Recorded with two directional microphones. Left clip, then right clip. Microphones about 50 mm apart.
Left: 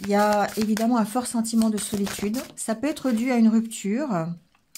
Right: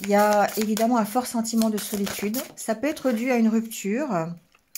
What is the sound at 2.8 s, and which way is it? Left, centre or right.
A woman's voice, left.